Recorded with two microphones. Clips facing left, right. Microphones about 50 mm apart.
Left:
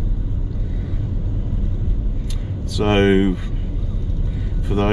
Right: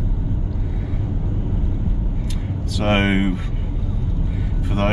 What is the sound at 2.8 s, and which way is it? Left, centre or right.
Speech, centre.